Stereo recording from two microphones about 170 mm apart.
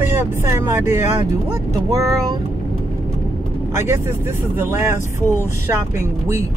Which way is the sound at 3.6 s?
15° right (ahead or behind).